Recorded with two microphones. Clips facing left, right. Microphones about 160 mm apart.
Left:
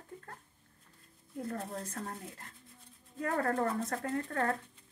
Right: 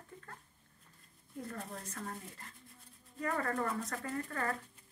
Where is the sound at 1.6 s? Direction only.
30° left (ahead or behind).